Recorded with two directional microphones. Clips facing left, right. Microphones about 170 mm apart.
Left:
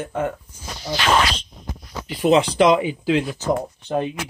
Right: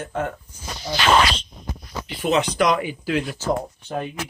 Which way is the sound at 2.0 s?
30° left (ahead or behind).